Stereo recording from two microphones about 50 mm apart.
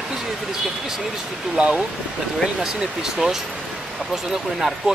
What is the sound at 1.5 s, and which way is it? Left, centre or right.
Speech, centre.